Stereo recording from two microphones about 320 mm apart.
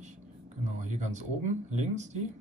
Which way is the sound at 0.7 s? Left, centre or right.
Right.